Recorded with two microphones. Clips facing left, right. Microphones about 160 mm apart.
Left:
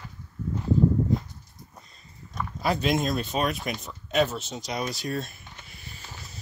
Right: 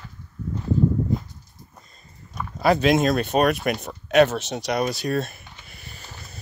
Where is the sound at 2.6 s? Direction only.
80° right.